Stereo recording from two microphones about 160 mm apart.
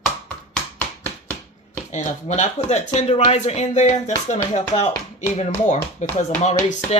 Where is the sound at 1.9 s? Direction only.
50° left (ahead or behind).